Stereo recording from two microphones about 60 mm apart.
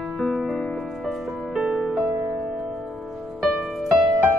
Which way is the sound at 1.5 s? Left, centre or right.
Centre.